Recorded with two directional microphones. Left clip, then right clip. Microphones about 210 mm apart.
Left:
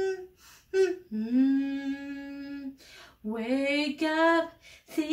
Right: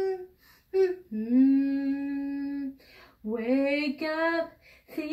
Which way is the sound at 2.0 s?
55° left (ahead or behind).